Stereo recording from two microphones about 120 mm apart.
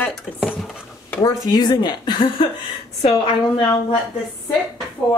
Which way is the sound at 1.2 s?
35° left (ahead or behind).